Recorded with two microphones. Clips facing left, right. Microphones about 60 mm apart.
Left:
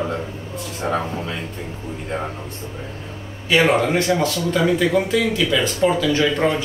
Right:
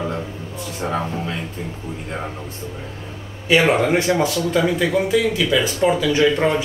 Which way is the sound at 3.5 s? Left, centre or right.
Centre.